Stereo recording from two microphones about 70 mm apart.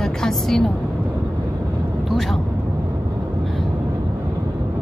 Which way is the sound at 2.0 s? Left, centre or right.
Centre.